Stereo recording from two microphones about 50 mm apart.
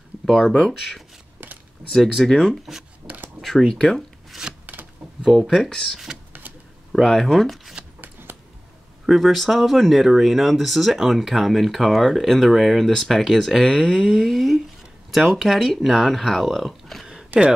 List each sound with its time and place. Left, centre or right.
0.3 s speech: centre
3.0 s a sound: right
3.3 s speech: centre
4.3 s a sound: centre
5.6 s speech: centre
6.4 s a sound: right
6.9 s speech: centre
8.0 s shuffling cards: right
9.0 s speech: centre
17.3 s speech: right